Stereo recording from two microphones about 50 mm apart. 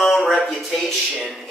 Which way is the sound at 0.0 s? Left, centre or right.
Centre.